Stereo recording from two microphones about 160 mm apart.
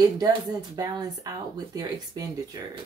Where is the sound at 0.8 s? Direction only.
25° right (ahead or behind).